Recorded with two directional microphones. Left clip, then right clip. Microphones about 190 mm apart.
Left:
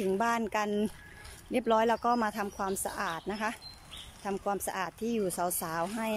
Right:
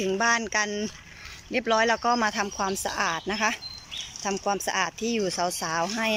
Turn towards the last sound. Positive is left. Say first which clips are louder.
# right 7 dB
turn(degrees=5)  # may be behind; listen again after turning